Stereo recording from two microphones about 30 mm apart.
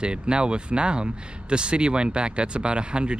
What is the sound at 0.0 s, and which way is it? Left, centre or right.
Speech, right.